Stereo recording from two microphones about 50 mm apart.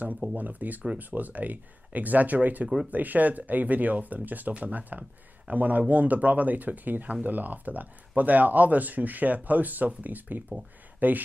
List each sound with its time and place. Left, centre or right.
0.4 s speech: right